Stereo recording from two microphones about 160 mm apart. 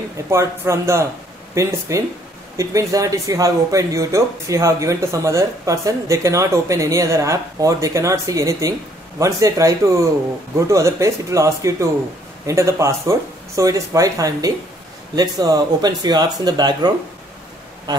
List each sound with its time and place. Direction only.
0.3 s speech: 15° right (ahead or behind)